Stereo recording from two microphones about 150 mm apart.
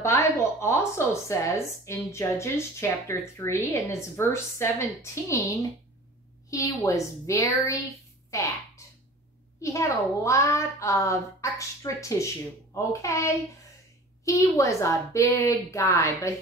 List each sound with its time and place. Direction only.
0.0 s a woman's voice: 20° left (ahead or behind)
8.3 s a sound: 20° left (ahead or behind)
9.6 s a woman's voice: 20° left (ahead or behind)